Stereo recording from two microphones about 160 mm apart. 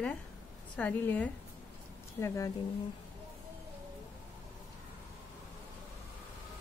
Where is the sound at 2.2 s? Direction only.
20° left (ahead or behind).